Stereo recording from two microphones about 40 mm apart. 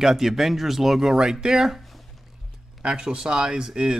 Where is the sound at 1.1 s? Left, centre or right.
Centre.